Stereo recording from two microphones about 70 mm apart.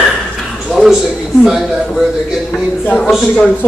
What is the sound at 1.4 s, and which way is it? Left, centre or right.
A man's voice, centre.